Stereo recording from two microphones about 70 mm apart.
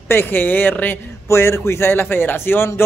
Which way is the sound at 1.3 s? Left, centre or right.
Left.